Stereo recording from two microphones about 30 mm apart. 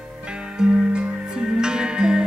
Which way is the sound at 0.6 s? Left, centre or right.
Right.